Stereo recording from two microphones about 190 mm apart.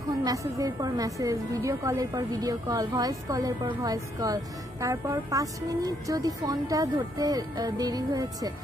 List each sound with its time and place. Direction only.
0.2 s a woman's voice: 20° right (ahead or behind)